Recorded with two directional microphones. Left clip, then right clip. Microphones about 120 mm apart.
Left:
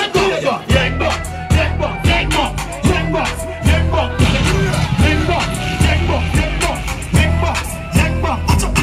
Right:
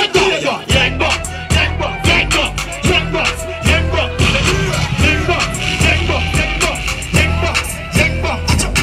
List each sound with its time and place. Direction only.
0.0 s music: 15° right (ahead or behind)